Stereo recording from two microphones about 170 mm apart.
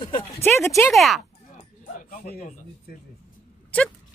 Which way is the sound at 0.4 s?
15° left (ahead or behind).